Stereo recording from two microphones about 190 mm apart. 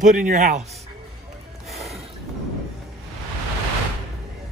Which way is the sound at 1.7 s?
Centre (ahead or behind).